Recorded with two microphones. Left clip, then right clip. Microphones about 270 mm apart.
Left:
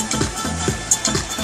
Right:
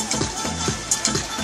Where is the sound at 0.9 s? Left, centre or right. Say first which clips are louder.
Left 3 dB; left.